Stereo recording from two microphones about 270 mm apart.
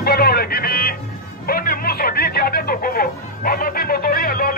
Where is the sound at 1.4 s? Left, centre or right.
Left.